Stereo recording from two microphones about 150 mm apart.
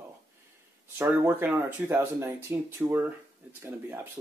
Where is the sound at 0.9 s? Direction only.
15° right (ahead or behind).